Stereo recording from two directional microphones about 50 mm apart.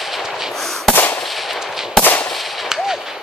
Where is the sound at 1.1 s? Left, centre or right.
Centre.